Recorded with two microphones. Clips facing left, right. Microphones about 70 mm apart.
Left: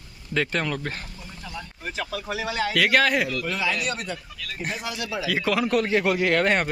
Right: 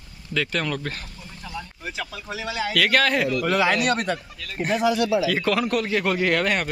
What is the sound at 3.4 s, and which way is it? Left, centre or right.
Speech, right.